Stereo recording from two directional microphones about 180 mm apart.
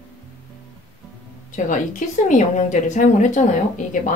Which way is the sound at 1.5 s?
45° left (ahead or behind).